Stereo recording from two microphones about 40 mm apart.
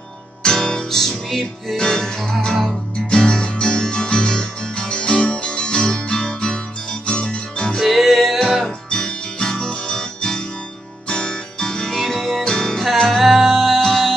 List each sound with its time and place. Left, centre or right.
0.4 s music: centre
7.8 s music: centre
8.6 s music: centre
12.4 s music: centre